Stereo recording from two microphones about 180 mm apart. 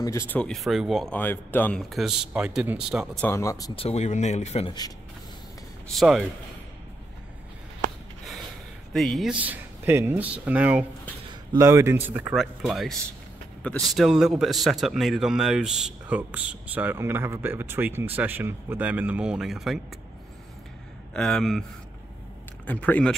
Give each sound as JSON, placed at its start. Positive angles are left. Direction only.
{"t": 0.0, "sound": "a man's voice", "side_deg": 15}
{"t": 3.3, "sound": "speech", "side_deg": 15}
{"t": 3.7, "sound": "speech", "side_deg": 35}
{"t": 5.9, "sound": "a man's voice", "side_deg": 0}
{"t": 8.9, "sound": "a man's voice", "side_deg": 0}
{"t": 21.1, "sound": "a man's voice", "side_deg": 0}
{"t": 22.7, "sound": "speech", "side_deg": 10}